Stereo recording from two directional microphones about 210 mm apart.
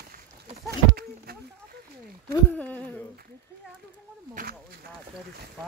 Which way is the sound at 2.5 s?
5° left (ahead or behind).